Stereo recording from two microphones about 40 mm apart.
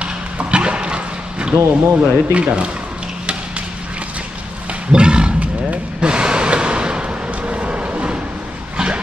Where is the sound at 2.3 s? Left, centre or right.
Right.